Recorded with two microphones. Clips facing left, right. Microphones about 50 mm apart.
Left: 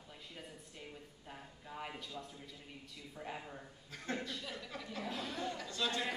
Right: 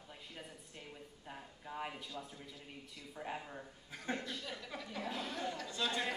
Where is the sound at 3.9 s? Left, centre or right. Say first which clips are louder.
Even; centre.